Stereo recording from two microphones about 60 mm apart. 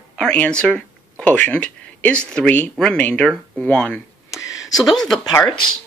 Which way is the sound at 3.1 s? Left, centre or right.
Centre.